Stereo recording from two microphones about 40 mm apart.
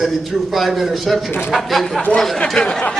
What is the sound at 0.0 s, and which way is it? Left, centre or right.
A man's voice, centre.